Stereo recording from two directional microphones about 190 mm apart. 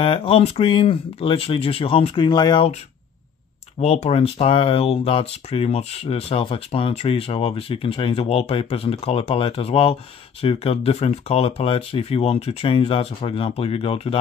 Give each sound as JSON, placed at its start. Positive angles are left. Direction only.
{"t": 0.0, "sound": "speech", "side_deg": 30}
{"t": 3.8, "sound": "speech", "side_deg": 35}